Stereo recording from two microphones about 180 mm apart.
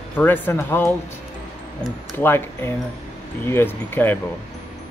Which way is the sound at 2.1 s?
10° left (ahead or behind).